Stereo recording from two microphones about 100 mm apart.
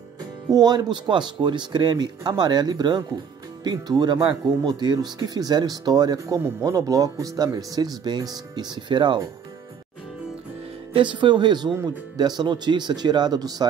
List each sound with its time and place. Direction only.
0.5 s speech: 45° right (ahead or behind)
11.0 s speech: 55° right (ahead or behind)